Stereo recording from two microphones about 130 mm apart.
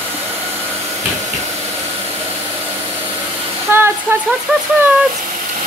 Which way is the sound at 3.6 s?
20° right (ahead or behind).